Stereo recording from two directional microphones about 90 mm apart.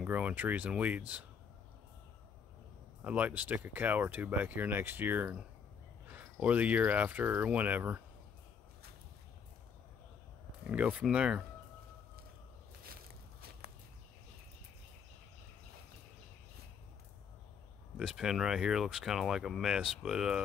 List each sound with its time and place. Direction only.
0.0 s speech: 20° right (ahead or behind)
3.0 s speech: 15° right (ahead or behind)
10.7 s speech: 15° right (ahead or behind)
17.9 s speech: 5° right (ahead or behind)